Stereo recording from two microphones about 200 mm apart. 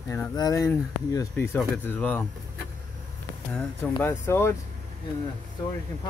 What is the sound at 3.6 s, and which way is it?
Speech, 10° left (ahead or behind).